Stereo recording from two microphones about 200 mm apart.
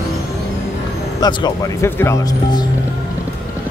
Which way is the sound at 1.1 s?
20° left (ahead or behind).